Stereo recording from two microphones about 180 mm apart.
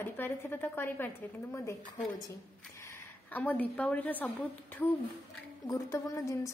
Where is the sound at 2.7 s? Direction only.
15° left (ahead or behind).